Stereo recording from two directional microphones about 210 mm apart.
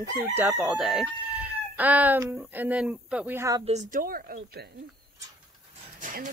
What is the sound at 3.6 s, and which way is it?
Speech, 35° right (ahead or behind).